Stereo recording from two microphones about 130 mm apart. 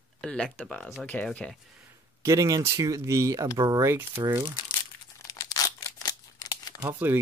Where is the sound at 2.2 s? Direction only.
25° right (ahead or behind).